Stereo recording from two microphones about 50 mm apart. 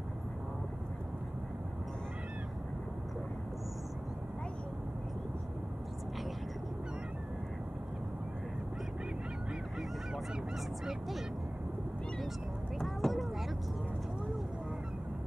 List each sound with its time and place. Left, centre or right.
10.9 s speech: centre
12.7 s vehicle: centre